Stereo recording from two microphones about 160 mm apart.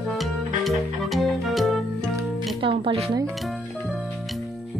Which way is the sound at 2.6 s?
30° right (ahead or behind).